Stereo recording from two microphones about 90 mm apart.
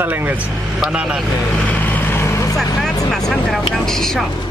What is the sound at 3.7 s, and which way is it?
Speech, 5° left (ahead or behind).